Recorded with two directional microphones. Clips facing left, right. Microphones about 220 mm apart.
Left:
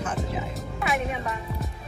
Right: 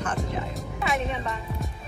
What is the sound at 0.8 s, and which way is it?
Speech, 10° left (ahead or behind).